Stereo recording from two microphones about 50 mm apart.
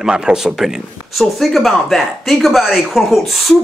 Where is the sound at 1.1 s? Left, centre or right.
Centre.